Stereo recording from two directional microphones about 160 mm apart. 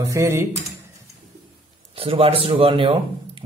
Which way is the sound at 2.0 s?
35° right (ahead or behind).